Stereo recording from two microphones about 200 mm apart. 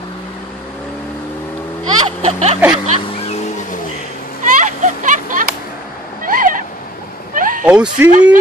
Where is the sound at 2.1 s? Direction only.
35° right (ahead or behind).